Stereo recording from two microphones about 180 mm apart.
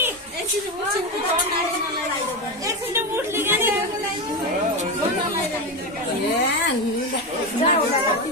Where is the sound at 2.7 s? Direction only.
15° right (ahead or behind).